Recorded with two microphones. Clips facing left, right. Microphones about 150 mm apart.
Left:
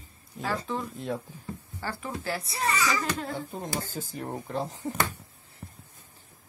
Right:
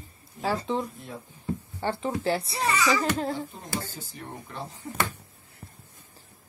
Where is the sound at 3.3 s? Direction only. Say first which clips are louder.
Even; 45° left (ahead or behind).